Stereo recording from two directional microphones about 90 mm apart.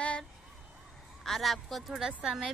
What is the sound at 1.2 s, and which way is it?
Speech, centre (ahead or behind).